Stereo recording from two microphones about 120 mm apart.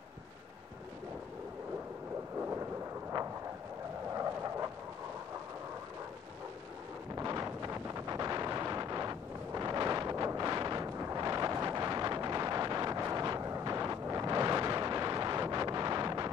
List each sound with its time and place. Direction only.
2.3 s thunder: 15° right (ahead or behind)
4.1 s a sound: 25° right (ahead or behind)
7.2 s wind noise: 25° right (ahead or behind)